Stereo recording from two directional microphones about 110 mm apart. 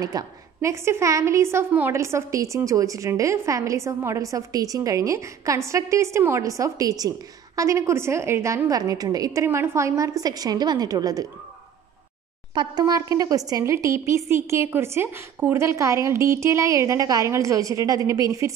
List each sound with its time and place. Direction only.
0.0 s a woman's voice: 30° right (ahead or behind)
12.5 s a woman's voice: 40° right (ahead or behind)